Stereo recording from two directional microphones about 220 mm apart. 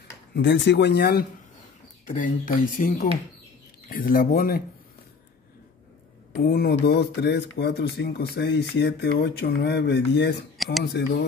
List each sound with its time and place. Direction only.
0.3 s speech: 55° left (ahead or behind)
6.3 s speech: 40° left (ahead or behind)